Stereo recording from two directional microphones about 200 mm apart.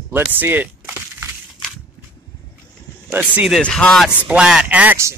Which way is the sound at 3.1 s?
10° right (ahead or behind).